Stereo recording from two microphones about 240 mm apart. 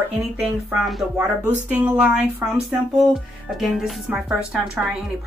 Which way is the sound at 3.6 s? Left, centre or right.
Centre.